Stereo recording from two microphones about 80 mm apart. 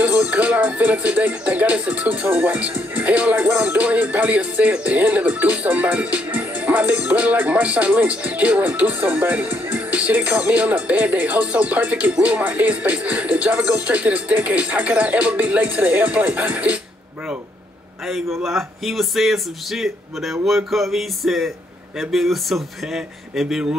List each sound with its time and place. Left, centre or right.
0.0 s speech: centre
18.0 s speech: centre